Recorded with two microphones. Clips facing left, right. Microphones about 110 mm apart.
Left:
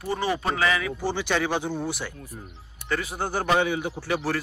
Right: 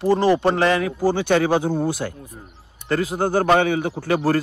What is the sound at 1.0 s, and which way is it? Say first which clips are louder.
Speech: right 9 dB; 50° right (ahead or behind).